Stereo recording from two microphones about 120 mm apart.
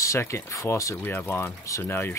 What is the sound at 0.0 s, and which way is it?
Speech, 25° left (ahead or behind).